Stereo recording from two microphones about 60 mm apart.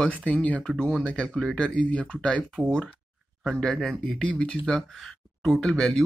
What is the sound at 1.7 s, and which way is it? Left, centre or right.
Speech, left.